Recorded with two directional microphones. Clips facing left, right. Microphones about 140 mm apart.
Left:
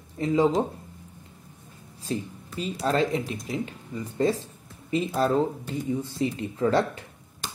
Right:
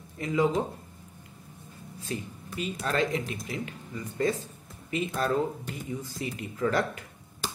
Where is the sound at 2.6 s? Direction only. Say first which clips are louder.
Left 4 dB; 35° left (ahead or behind).